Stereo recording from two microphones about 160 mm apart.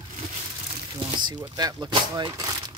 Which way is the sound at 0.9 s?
30° right (ahead or behind).